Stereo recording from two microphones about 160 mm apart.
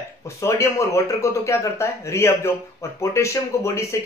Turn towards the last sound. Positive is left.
turn(degrees=20)  # may be behind; listen again after turning